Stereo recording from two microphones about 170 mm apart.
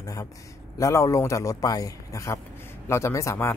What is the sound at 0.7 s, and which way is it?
A man's voice, 20° left (ahead or behind).